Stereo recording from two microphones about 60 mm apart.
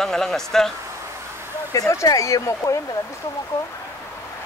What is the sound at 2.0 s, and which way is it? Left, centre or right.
Speech, left.